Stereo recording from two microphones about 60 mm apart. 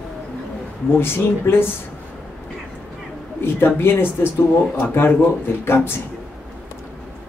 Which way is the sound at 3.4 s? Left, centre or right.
Left.